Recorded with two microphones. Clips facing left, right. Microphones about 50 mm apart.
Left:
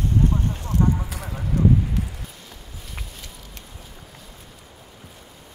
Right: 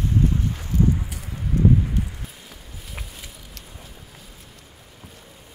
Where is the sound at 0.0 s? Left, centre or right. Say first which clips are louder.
Even; left.